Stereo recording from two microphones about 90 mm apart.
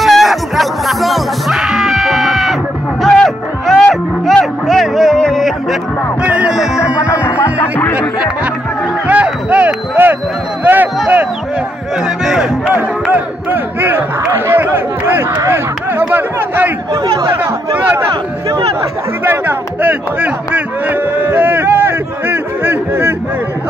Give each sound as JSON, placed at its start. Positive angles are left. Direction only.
{"t": 0.0, "sound": "music", "side_deg": 0}
{"t": 6.2, "sound": "music", "side_deg": -15}
{"t": 7.0, "sound": "music", "side_deg": 30}
{"t": 9.0, "sound": "music", "side_deg": -15}
{"t": 10.6, "sound": "a sound", "side_deg": -20}
{"t": 12.3, "sound": "music", "side_deg": -5}
{"t": 13.1, "sound": "crowd", "side_deg": -20}
{"t": 17.7, "sound": "a sound", "side_deg": -20}